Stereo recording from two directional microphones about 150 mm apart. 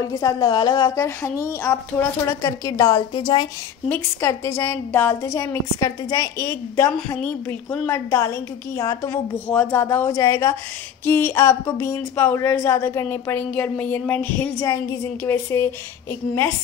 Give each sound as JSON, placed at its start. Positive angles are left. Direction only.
{"t": 0.0, "sound": "a woman's voice", "side_deg": 25}